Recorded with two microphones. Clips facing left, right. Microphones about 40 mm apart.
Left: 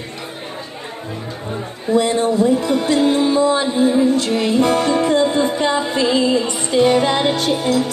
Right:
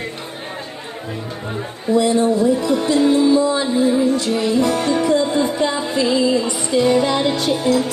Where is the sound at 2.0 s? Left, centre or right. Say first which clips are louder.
Even; left.